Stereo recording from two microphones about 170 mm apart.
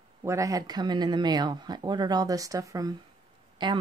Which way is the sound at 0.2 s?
20° right (ahead or behind).